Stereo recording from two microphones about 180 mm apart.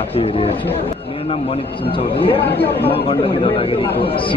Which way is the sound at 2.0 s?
30° left (ahead or behind).